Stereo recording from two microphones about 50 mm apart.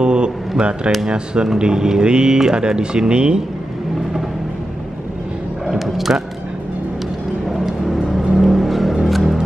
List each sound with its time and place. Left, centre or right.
0.0 s a sound: centre
1.1 s speech: centre
5.7 s speech: centre
7.4 s music: centre